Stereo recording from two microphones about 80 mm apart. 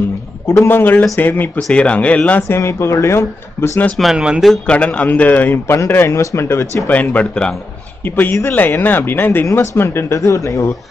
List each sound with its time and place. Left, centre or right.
0.5 s a man's voice: left
2.4 s speech: left
3.9 s speech: centre
4.6 s a man's voice: centre; by 6.8 s left
6.9 s speech: centre
8.0 s a man's voice: left